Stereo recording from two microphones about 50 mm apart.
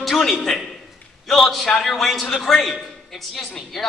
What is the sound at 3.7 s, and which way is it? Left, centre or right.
Speech, centre.